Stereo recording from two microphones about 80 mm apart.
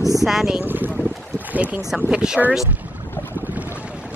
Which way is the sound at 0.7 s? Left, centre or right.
Right.